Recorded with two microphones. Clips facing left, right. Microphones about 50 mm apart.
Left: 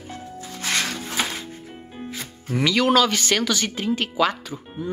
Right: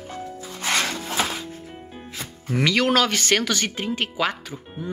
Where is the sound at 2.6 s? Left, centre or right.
Right.